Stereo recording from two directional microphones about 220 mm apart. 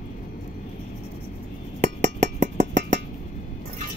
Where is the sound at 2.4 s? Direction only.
35° right (ahead or behind).